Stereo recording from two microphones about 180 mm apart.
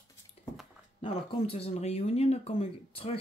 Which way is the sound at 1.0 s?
35° left (ahead or behind).